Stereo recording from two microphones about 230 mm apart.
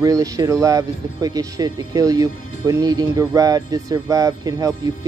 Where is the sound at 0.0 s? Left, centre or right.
Centre.